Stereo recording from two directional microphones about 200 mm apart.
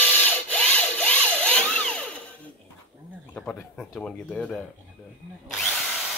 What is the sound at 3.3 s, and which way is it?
Speech, 5° left (ahead or behind).